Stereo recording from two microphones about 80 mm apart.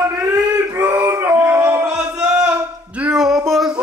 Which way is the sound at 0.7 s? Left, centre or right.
Right.